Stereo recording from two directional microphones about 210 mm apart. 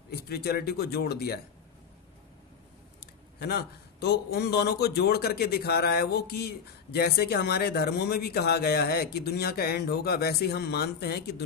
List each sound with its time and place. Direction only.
0.1 s a man's voice: 50° left (ahead or behind)
3.3 s a man's voice: 50° left (ahead or behind)